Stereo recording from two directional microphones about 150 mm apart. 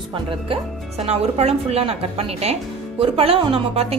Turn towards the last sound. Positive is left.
turn(degrees=-40)  # may be behind; listen again after turning